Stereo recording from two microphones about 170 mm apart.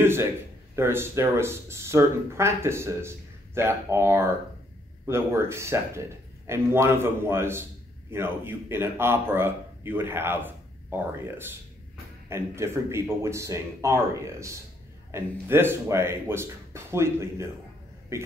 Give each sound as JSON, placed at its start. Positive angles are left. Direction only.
{"t": 0.0, "sound": "a man's voice", "side_deg": -15}